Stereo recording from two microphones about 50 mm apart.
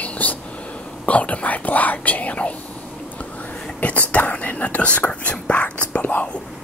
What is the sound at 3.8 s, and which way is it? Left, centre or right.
Whispering, left.